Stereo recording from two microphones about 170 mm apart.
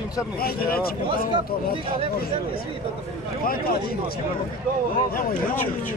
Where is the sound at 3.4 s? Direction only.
60° left (ahead or behind).